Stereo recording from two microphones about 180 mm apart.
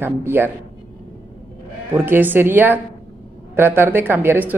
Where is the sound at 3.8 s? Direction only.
10° right (ahead or behind).